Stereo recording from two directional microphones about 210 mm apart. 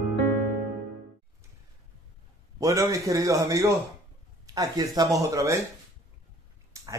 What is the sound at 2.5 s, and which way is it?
Speech, 15° right (ahead or behind).